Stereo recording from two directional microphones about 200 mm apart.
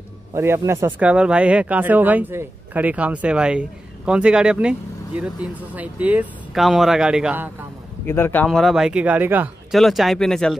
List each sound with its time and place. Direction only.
0.3 s speech: 15° right (ahead or behind)
8.1 s speech: 10° left (ahead or behind)